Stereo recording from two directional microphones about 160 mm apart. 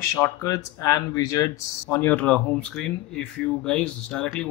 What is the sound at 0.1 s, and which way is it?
Speech, 20° left (ahead or behind).